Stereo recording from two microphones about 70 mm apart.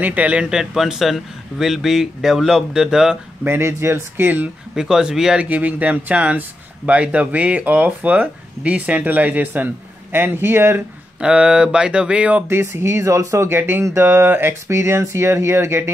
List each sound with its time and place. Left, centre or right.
0.0 s a man's voice: right
3.4 s speech: right
4.7 s a man's voice: centre
5.5 s speech: right
11.1 s a man's voice: centre
12.4 s speech: right